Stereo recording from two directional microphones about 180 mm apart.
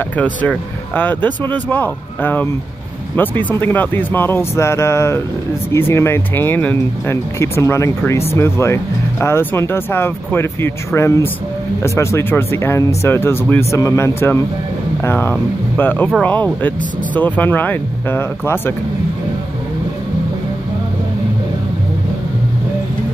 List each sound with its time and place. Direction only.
0.1 s speech: 10° left (ahead or behind)